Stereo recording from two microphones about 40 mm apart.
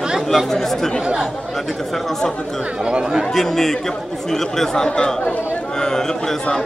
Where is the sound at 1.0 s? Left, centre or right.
Right.